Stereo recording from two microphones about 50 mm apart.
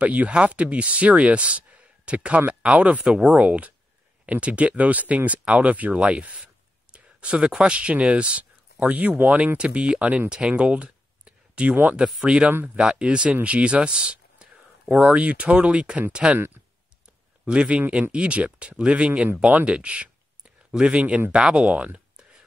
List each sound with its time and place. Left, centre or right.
0.0 s speech: right
10.3 s a sound: right
11.7 s speech: right; by 15.1 s centre
15.1 s speech: right
17.5 s speech: right